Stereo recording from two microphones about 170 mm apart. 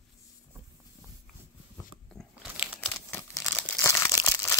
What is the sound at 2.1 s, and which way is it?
Biting, centre (ahead or behind).